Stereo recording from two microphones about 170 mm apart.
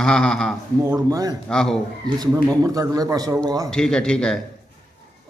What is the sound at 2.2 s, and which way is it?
A man's voice, 20° right (ahead or behind).